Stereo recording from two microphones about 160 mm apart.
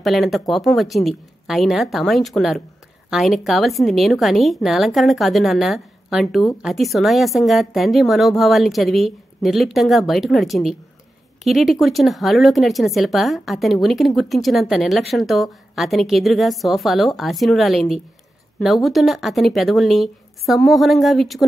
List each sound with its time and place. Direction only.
0.0 s a woman's voice: centre (ahead or behind)